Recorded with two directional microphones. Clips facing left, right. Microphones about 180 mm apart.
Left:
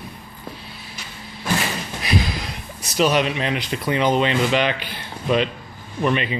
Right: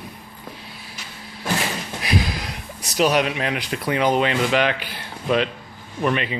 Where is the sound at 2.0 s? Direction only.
10° right (ahead or behind).